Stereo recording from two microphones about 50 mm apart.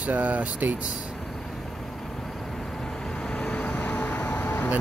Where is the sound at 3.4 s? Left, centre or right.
Left.